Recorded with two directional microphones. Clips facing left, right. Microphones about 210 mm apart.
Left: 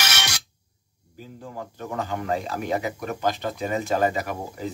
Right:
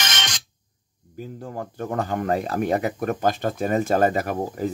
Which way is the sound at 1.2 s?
45° right (ahead or behind).